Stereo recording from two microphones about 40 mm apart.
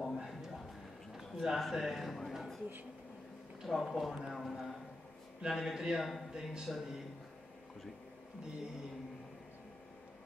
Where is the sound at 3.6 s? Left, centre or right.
Centre.